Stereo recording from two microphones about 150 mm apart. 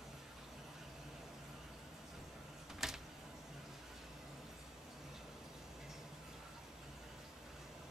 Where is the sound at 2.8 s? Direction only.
Centre (ahead or behind).